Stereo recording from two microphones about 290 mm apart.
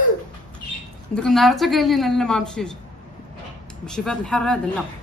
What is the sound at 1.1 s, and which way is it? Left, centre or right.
A woman's voice, centre.